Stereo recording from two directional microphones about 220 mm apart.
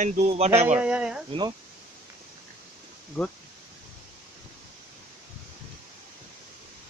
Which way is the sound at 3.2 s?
5° left (ahead or behind).